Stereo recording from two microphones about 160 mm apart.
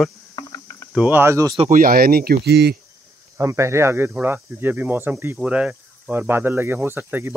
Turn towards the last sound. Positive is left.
turn(degrees=-15)  # may be behind; listen again after turning